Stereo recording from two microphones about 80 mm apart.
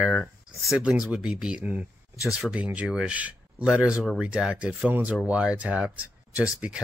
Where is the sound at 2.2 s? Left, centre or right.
Centre.